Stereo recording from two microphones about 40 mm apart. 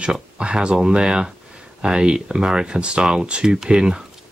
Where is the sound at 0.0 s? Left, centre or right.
Right.